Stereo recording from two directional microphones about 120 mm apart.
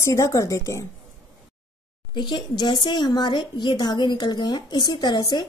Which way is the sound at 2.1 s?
40° left (ahead or behind).